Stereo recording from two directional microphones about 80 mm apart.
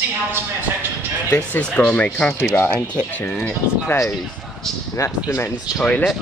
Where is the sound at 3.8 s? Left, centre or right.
Left.